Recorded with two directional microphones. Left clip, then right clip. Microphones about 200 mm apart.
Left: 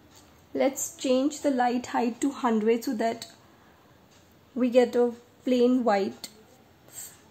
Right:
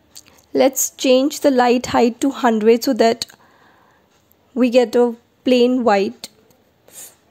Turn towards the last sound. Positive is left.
turn(degrees=-35)  # may be behind; listen again after turning